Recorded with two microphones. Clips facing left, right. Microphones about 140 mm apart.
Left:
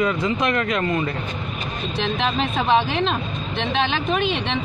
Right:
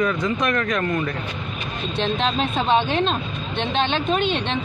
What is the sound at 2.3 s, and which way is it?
Speech, centre (ahead or behind).